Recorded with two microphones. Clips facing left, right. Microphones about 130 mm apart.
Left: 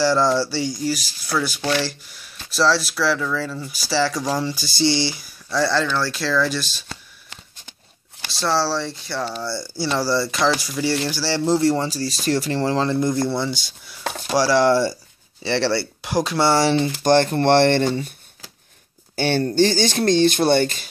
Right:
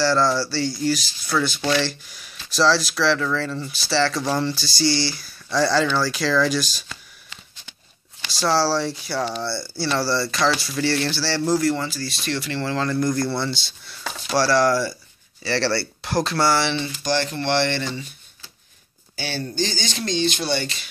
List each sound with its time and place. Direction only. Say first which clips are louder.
0.0 s speech: left 2 dB; 15° left (ahead or behind)
5.5 s speech: right 1 dB; centre (ahead or behind)
8.3 s speech: right 1 dB; centre (ahead or behind)
9.4 s speech: left 1 dB; 15° left (ahead or behind)
14.0 s speech: left 4 dB; 50° left (ahead or behind)
14.3 s speech: left 2 dB; 15° left (ahead or behind)
16.4 s speech: left 5 dB; 35° left (ahead or behind)
17.0 s speech: left 8 dB; 50° left (ahead or behind)
19.1 s speech: left 9 dB; 55° left (ahead or behind)